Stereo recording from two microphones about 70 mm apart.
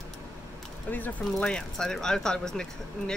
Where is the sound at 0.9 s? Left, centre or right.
Left.